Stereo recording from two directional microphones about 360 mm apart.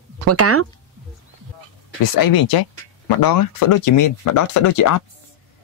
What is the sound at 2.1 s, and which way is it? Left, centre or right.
Speech, left.